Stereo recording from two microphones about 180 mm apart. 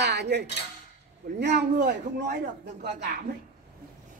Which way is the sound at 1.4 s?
70° right (ahead or behind).